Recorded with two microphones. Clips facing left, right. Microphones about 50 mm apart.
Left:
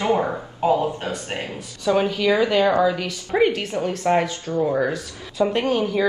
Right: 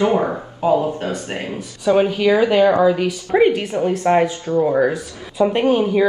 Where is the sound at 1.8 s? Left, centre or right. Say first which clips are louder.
Right 4 dB; right.